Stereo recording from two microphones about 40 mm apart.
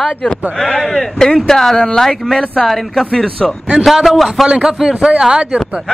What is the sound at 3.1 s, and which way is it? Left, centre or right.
Speech, centre.